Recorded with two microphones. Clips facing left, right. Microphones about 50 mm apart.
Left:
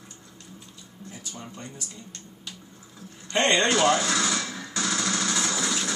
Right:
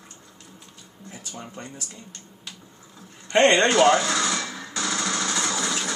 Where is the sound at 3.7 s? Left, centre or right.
Centre.